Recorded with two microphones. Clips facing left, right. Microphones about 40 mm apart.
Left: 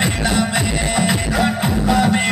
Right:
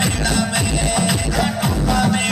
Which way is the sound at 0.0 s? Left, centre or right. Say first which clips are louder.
Left 1 dB; left.